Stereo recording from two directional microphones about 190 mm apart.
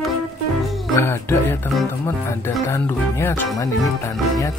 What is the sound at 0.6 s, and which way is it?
Music, centre (ahead or behind).